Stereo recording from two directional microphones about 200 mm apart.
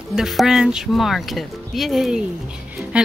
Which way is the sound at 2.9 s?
5° right (ahead or behind).